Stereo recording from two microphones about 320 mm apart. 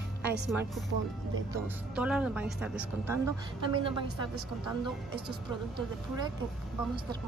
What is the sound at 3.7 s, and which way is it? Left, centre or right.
Speech, centre.